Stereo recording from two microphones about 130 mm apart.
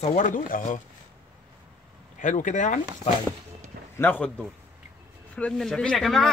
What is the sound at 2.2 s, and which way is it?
Speech, 75° left (ahead or behind).